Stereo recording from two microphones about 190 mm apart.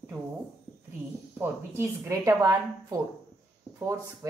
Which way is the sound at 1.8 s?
15° right (ahead or behind).